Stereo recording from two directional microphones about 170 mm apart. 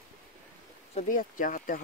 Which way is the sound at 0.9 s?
50° left (ahead or behind).